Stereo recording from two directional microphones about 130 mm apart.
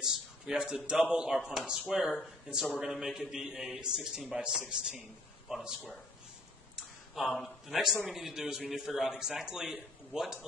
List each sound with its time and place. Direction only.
0.0 s a sound: 5° right (ahead or behind)
1.1 s a man's voice: 5° right (ahead or behind)
7.2 s a man's voice: centre (ahead or behind)